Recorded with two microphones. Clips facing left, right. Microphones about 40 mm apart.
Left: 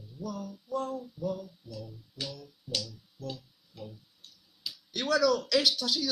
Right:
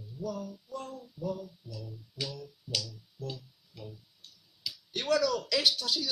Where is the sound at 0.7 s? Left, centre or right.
Left.